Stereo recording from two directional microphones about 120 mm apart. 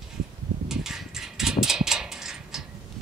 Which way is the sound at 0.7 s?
5° right (ahead or behind).